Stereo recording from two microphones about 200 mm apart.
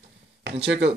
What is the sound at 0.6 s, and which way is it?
Speech, 60° right (ahead or behind).